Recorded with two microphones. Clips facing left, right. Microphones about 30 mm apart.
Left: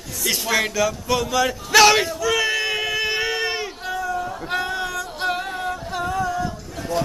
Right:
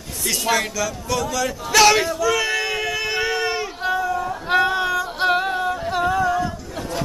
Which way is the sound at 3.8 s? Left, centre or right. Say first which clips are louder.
Right 4 dB; centre.